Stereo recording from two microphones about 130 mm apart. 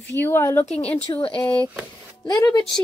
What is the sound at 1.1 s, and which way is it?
Speech, 40° left (ahead or behind).